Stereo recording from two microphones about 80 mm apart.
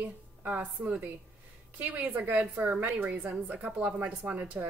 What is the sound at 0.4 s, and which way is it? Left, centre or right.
A woman's voice, centre.